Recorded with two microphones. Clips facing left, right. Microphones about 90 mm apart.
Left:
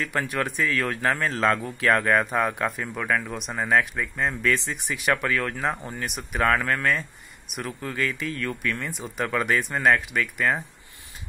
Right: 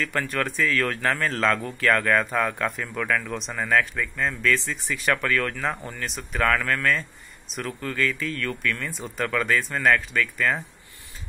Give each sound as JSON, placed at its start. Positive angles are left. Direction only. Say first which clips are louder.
{"t": 0.0, "sound": "speech", "louder": "even", "side_deg": 15}